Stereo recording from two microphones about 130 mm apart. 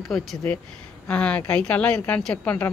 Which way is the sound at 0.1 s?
5° left (ahead or behind).